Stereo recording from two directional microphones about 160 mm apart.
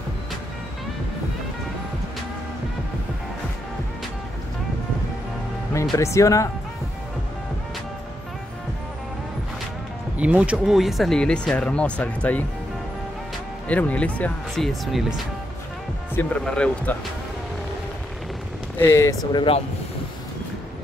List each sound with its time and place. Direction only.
5.9 s speech: 20° left (ahead or behind)
10.1 s speech: 5° right (ahead or behind); by 12.4 s 10° left (ahead or behind)
13.7 s speech: 10° left (ahead or behind)
18.8 s speech: 15° left (ahead or behind)
19.3 s speech: 35° left (ahead or behind)